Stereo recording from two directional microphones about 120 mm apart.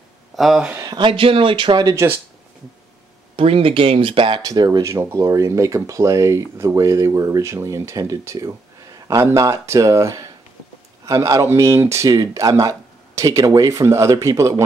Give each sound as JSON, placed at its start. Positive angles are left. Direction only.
{"t": 0.4, "sound": "speech", "side_deg": -5}
{"t": 0.7, "sound": "speech", "side_deg": -35}
{"t": 3.3, "sound": "speech", "side_deg": -50}
{"t": 4.6, "sound": "speech", "side_deg": -25}